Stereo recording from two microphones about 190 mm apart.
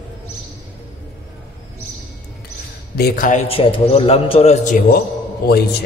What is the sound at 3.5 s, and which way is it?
A man's voice, 30° left (ahead or behind).